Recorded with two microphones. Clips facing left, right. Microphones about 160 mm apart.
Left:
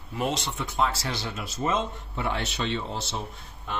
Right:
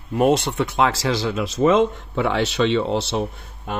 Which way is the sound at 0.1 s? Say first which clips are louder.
Right 11 dB; 55° right (ahead or behind).